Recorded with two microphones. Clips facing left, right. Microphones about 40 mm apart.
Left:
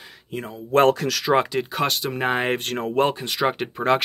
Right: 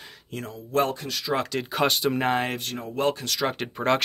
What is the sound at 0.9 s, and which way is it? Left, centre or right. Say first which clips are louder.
Speech: left 10 dB; left.